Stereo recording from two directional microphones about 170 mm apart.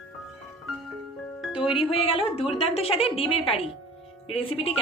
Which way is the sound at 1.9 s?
35° left (ahead or behind).